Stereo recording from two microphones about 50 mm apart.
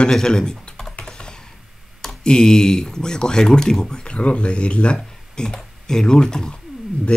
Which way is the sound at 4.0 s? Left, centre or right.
Left.